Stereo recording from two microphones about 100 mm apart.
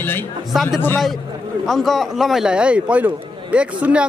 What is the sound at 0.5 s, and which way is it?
A man's voice, centre (ahead or behind).